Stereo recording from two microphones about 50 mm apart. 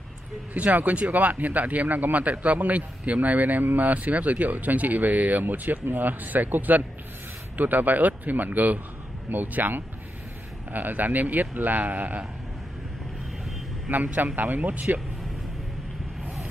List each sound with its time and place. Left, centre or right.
0.6 s a man's voice: right
13.8 s a man's voice: right